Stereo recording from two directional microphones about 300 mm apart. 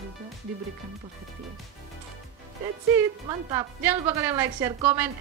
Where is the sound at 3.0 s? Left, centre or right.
Centre.